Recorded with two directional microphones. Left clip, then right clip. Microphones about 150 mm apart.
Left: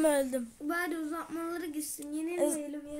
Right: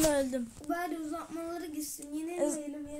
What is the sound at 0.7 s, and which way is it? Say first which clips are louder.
Speech: left 2 dB; 40° left (ahead or behind).